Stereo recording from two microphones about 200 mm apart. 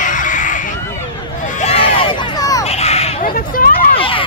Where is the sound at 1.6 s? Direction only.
30° left (ahead or behind).